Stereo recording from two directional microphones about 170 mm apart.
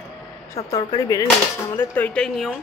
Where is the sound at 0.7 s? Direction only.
20° left (ahead or behind); by 2.5 s centre (ahead or behind).